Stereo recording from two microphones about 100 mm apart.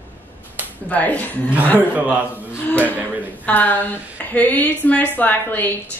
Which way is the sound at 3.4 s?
15° left (ahead or behind).